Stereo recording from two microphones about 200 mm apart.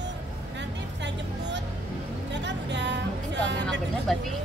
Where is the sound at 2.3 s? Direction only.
60° right (ahead or behind).